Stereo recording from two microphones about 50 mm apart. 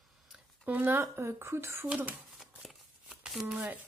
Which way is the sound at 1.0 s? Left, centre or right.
Right.